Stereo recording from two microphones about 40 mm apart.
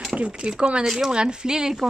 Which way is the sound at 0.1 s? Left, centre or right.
Right.